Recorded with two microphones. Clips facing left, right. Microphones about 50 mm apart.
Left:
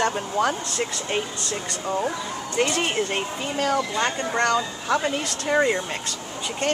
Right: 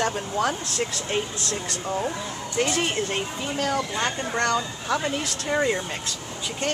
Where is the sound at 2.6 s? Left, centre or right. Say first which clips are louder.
Left 2 dB; left.